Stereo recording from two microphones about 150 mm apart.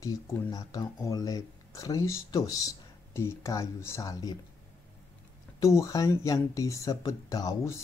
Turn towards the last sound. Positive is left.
turn(degrees=20)  # may be behind; listen again after turning